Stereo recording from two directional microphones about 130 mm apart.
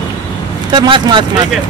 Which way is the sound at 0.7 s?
35° right (ahead or behind).